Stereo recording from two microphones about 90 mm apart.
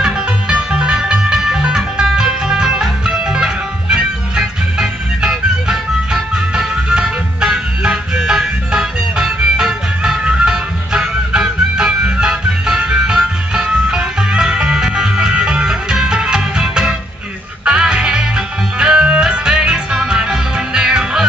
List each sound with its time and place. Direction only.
0.0 s music: 10° right (ahead or behind)